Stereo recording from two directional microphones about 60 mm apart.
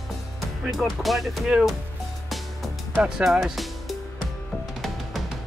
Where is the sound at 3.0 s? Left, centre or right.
Centre.